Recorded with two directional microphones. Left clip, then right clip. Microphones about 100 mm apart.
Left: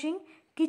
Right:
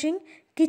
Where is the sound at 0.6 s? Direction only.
35° right (ahead or behind).